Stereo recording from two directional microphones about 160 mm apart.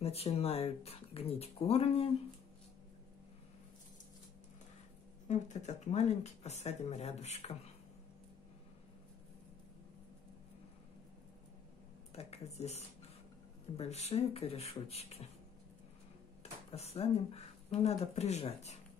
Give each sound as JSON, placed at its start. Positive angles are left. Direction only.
{"t": 0.0, "sound": "speech", "side_deg": 40}
{"t": 5.3, "sound": "speech", "side_deg": 45}
{"t": 12.1, "sound": "speech", "side_deg": 40}
{"t": 16.7, "sound": "speech", "side_deg": 40}